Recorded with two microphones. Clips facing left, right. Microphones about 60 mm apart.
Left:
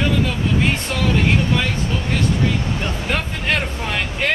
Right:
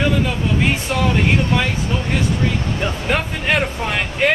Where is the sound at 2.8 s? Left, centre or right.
Centre.